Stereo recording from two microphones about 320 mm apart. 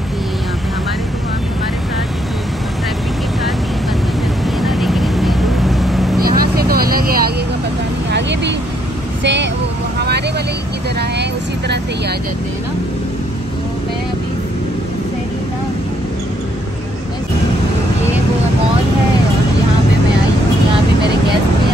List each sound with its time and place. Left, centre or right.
4.6 s vehicle: centre
6.1 s vehicle: right